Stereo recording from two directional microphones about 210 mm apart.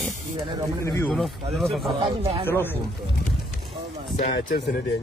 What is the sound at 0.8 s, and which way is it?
Speech, 15° left (ahead or behind).